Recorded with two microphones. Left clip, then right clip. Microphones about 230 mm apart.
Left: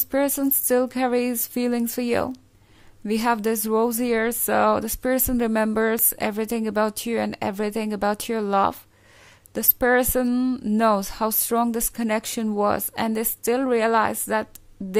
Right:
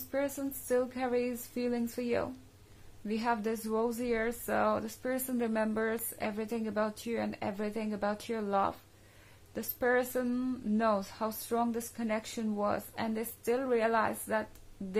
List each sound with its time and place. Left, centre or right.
0.1 s a woman's voice: left